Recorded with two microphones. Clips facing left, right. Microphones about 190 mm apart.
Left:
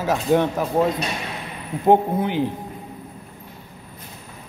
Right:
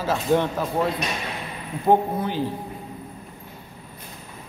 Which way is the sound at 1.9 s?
20° left (ahead or behind).